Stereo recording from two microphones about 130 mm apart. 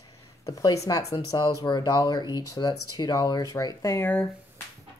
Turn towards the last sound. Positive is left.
turn(degrees=10)  # may be behind; listen again after turning